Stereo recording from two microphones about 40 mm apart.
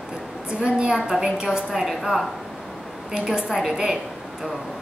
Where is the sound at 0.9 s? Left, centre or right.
Centre.